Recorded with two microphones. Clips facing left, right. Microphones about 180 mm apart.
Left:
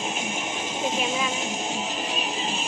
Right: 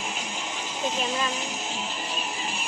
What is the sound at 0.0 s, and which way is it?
Music, 20° left (ahead or behind).